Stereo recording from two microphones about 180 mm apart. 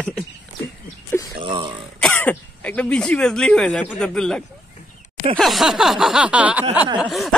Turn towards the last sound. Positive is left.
turn(degrees=0)  # may be behind; listen again after turning